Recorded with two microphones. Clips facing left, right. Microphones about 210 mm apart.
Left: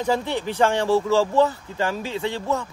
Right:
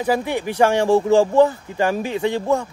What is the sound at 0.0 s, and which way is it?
Speech, 10° right (ahead or behind).